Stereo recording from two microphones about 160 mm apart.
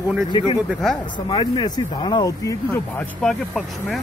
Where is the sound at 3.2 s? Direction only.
Centre (ahead or behind).